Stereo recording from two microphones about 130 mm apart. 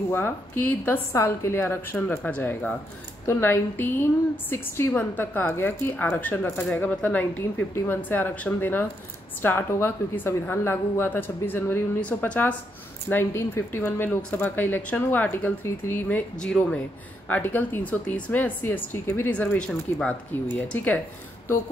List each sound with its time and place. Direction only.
0.1 s speech: 15° left (ahead or behind)